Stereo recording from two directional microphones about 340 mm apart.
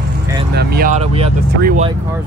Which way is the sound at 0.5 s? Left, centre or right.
Right.